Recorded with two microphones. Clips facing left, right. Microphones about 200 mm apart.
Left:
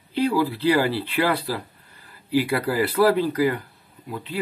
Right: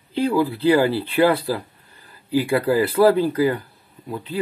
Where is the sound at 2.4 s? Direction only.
30° right (ahead or behind).